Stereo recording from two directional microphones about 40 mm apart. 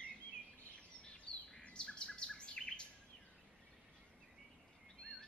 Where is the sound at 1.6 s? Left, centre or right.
Left.